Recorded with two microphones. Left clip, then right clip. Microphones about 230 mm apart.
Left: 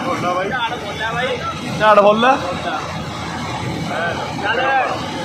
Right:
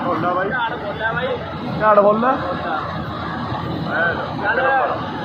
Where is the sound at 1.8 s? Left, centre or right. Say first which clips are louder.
Left 2 dB; centre.